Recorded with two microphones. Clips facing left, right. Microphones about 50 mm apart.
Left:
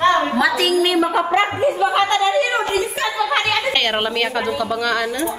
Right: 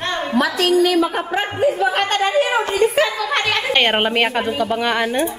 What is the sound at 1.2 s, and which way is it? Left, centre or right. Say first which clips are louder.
Speech: left 5 dB; left.